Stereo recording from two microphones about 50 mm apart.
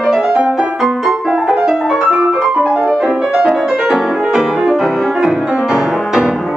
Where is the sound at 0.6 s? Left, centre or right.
Centre.